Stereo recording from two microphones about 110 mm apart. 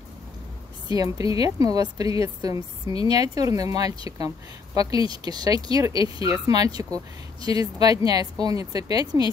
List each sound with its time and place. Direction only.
0.8 s a woman's voice: 35° right (ahead or behind)